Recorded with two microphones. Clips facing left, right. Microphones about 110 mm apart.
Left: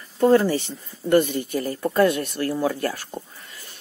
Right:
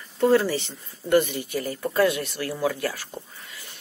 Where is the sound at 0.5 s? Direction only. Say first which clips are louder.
Left 3 dB; 45° left (ahead or behind).